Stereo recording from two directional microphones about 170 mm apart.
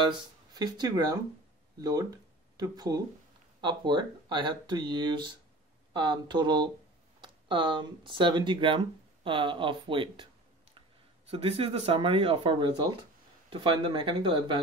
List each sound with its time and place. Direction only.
0.6 s speech: 25° right (ahead or behind)
11.2 s speech: 35° right (ahead or behind)